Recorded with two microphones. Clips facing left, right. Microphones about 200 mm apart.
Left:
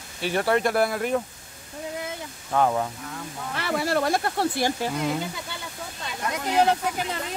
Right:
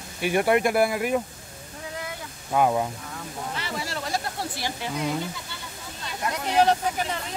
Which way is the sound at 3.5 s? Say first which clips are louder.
Left 10 dB; 60° left (ahead or behind).